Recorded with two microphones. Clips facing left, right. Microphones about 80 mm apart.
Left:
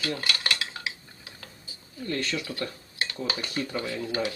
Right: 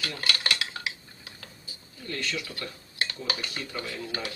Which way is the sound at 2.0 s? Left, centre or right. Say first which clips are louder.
Left 3 dB; left.